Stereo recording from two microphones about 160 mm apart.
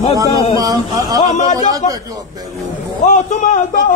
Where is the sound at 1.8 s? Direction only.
50° left (ahead or behind).